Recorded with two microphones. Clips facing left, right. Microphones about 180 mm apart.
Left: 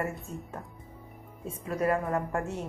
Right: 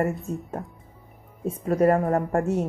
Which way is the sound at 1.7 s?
45° right (ahead or behind).